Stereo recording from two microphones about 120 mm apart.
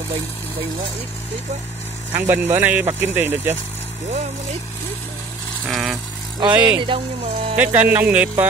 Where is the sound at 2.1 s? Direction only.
20° right (ahead or behind).